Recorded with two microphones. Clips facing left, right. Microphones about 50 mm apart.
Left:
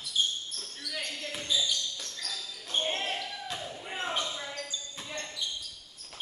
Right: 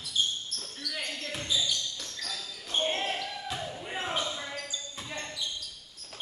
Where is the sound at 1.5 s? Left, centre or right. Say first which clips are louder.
Left 1 dB; centre.